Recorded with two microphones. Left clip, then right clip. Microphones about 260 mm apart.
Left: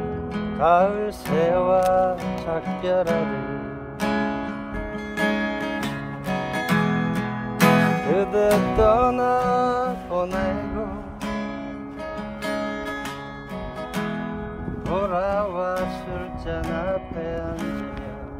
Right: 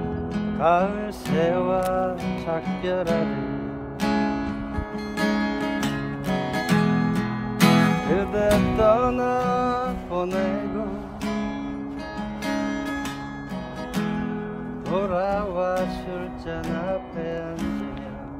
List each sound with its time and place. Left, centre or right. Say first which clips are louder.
0.3 s music: even; centre
0.6 s music: left 3 dB; left
3.1 s music: left 1 dB; centre
8.1 s music: left 3 dB; left
8.5 s music: right 1 dB; centre
12.4 s music: even; centre
13.9 s music: right 1 dB; centre